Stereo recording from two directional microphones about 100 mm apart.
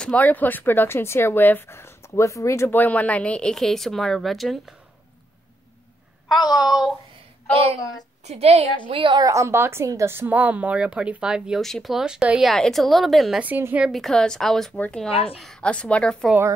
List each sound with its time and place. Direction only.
0.0 s speech: 15° left (ahead or behind); by 2.7 s 30° left (ahead or behind)
2.7 s a woman's voice: 15° left (ahead or behind); by 4.7 s centre (ahead or behind)
6.2 s a woman's voice: 45° left (ahead or behind)
8.3 s a woman's voice: 90° right
8.9 s a woman's voice: 60° right (ahead or behind)
9.2 s a woman's voice: 30° right (ahead or behind); by 13.4 s centre (ahead or behind)
13.4 s speech: 20° right (ahead or behind)
13.8 s a woman's voice: centre (ahead or behind)